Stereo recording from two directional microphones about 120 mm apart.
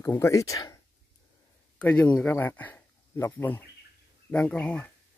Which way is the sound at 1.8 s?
10° left (ahead or behind).